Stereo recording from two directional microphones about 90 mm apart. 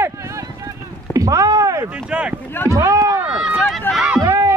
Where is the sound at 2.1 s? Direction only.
10° right (ahead or behind).